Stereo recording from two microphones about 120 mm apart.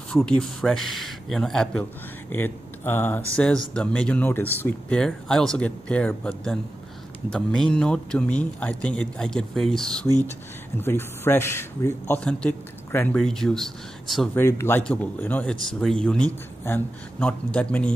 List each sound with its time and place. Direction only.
0.1 s speech: 5° left (ahead or behind)
10.8 s speech: 20° left (ahead or behind)
12.2 s speech: 10° left (ahead or behind)
13.1 s speech: 5° left (ahead or behind)
14.3 s speech: 20° left (ahead or behind)
17.2 s speech: 10° left (ahead or behind)